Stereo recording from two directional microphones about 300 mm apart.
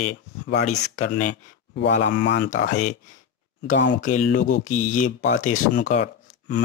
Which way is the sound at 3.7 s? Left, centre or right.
Left.